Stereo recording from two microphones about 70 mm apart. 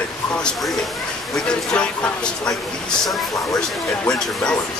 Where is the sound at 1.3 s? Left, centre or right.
Centre.